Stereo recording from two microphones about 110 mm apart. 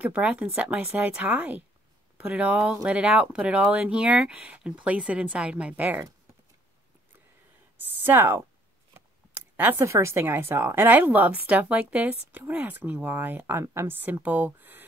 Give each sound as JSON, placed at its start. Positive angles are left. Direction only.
{"t": 0.0, "sound": "a woman's voice", "side_deg": -10}
{"t": 7.7, "sound": "speech", "side_deg": -20}
{"t": 9.6, "sound": "a woman's voice", "side_deg": -20}